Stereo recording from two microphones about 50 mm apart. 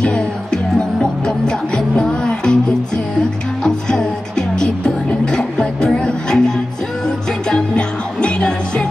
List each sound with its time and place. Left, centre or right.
0.7 s music: centre